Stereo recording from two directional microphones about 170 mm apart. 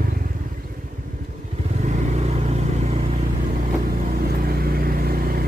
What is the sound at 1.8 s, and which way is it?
Vehicle, 45° right (ahead or behind).